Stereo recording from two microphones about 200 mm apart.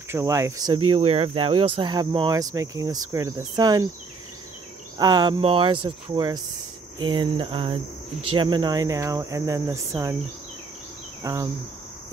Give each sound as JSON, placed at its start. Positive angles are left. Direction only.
{"t": 0.1, "sound": "cricket", "side_deg": -15}
{"t": 0.8, "sound": "speech", "side_deg": -30}
{"t": 4.9, "sound": "speech", "side_deg": -20}
{"t": 8.4, "sound": "cricket", "side_deg": -20}
{"t": 11.2, "sound": "cricket", "side_deg": -15}